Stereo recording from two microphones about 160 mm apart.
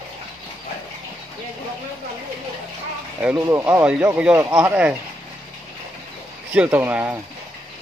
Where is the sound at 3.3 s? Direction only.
15° right (ahead or behind).